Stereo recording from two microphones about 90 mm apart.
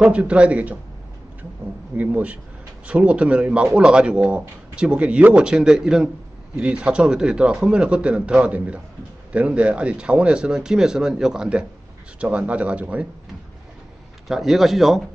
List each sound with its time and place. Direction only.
0.0 s speech: 10° right (ahead or behind)
2.0 s speech: 15° right (ahead or behind)
14.2 s speech: 5° right (ahead or behind)